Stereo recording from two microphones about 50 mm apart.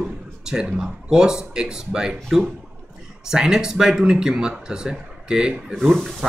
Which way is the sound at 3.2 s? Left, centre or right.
Centre.